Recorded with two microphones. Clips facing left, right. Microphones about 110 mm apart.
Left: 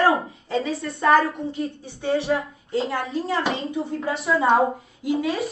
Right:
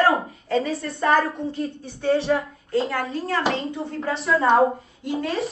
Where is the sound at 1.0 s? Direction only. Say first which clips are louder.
Left 2 dB; centre (ahead or behind).